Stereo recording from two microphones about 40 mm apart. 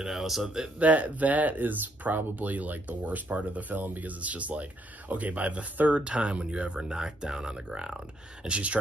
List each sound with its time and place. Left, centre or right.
0.0 s speech: centre
0.7 s speech: right
8.5 s speech: right